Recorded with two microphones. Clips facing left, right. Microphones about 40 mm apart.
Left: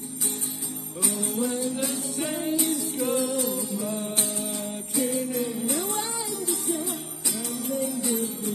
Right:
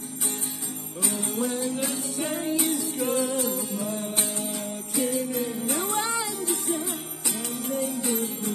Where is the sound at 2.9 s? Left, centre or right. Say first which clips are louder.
Left 1 dB; right.